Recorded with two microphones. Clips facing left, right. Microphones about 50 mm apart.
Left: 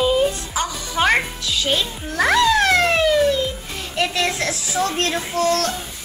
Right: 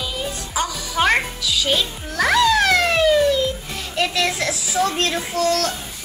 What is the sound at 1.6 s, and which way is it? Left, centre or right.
Speech, centre.